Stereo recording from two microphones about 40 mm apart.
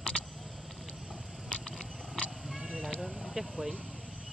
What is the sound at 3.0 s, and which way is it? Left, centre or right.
Vehicle, centre.